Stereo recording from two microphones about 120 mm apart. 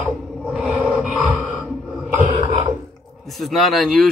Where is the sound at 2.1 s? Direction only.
80° right.